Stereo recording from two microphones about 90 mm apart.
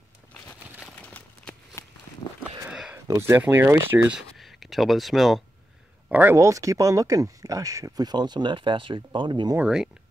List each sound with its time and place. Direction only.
1.0 s a sound: 15° left (ahead or behind)
1.8 s walk: 35° left (ahead or behind)
3.2 s speech: 30° right (ahead or behind)
4.1 s speech: centre (ahead or behind)
6.0 s speech: 20° right (ahead or behind)
6.3 s speech: 35° right (ahead or behind); by 9.5 s 60° right (ahead or behind)